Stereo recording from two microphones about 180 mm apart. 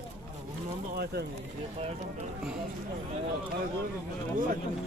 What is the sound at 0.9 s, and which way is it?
Speech, 60° right (ahead or behind).